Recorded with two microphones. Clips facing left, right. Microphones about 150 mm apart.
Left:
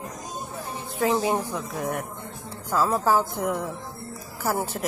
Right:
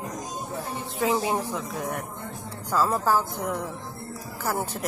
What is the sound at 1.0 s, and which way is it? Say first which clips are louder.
A woman's voice: left 2 dB; centre (ahead or behind).